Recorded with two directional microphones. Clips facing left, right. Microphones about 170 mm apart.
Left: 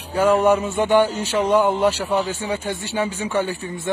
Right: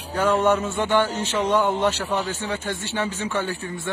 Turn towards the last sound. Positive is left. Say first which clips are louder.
# left 4 dB
turn(degrees=15)  # may be behind; listen again after turning